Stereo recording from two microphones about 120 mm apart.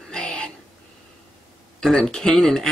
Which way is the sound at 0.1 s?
5° left (ahead or behind).